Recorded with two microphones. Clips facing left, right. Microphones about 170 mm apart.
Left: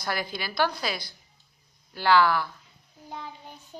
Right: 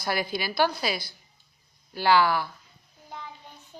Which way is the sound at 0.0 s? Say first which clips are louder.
Right 3 dB; 10° right (ahead or behind).